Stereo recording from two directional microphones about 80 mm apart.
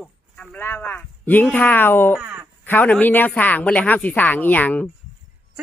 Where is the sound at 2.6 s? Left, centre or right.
Left.